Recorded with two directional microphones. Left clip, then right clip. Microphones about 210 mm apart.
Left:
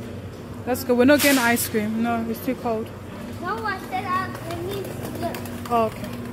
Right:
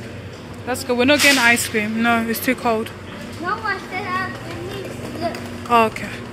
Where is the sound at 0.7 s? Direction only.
35° left (ahead or behind).